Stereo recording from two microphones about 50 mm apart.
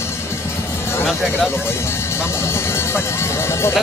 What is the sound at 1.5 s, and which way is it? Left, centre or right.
Speech, left.